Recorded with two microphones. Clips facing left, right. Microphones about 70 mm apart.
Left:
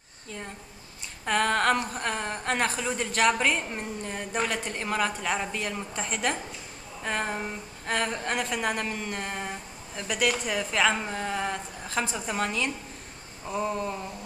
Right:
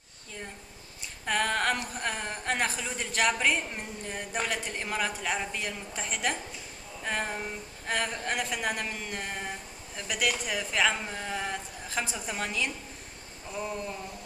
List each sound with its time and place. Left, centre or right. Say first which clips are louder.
1.2 s a woman's voice: left 4 dB; centre